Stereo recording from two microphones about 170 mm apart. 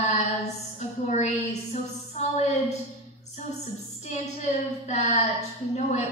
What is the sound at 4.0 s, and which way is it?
A woman's voice, 40° left (ahead or behind).